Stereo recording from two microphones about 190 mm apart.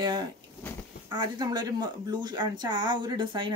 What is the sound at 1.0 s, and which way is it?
Speech, 20° right (ahead or behind).